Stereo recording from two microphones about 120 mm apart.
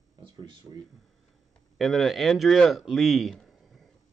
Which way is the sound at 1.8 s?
Centre (ahead or behind).